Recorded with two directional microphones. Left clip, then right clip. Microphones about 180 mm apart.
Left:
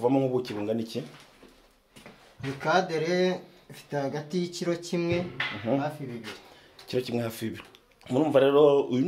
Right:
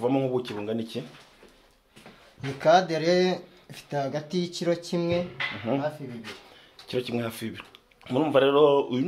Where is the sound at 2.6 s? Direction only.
45° right (ahead or behind); by 5.2 s 25° right (ahead or behind).